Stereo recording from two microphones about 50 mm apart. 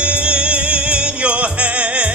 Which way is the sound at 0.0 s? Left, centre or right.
Right.